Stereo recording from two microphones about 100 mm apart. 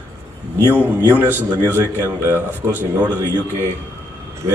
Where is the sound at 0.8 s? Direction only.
20° right (ahead or behind).